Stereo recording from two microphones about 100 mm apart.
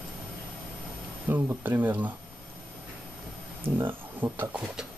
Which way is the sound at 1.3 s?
20° right (ahead or behind).